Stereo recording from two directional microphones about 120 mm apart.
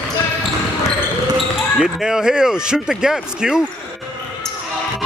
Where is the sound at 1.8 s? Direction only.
5° right (ahead or behind).